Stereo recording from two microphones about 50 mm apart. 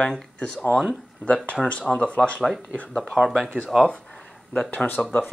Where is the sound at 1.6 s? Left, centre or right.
Left.